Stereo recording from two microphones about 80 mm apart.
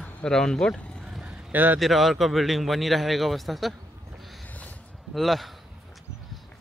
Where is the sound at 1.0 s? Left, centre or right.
Centre.